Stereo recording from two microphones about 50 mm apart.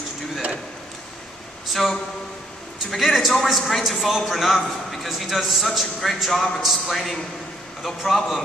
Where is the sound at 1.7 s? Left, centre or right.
Centre.